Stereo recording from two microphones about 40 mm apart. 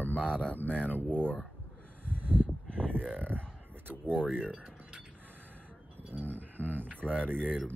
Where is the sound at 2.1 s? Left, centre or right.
Right.